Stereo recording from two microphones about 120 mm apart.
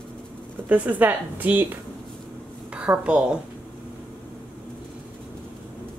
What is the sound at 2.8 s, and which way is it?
Speech, 10° right (ahead or behind).